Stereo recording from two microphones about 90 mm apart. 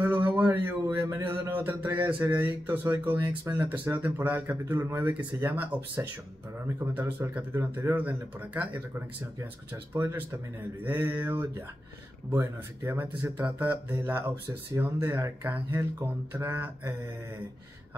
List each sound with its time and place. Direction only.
0.0 s a sound: 25° right (ahead or behind)
0.6 s a man's voice: 25° right (ahead or behind)
3.2 s speech: 50° right (ahead or behind)
3.5 s speech: 20° right (ahead or behind)
9.9 s speech: 30° right (ahead or behind)